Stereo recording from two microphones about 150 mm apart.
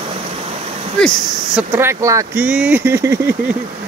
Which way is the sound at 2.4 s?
10° right (ahead or behind).